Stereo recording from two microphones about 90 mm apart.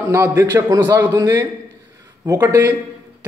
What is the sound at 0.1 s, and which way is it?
A man's voice, 30° right (ahead or behind).